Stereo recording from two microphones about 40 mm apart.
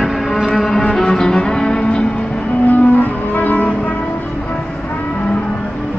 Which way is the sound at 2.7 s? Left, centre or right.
Left.